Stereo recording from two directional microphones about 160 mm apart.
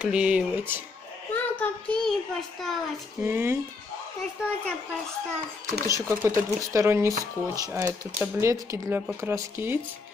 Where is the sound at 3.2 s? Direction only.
15° right (ahead or behind).